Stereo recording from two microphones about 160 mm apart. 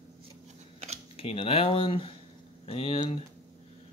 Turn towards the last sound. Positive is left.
turn(degrees=35)  # may be behind; listen again after turning